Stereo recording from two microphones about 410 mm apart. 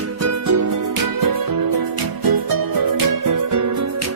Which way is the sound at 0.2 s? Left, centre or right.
Right.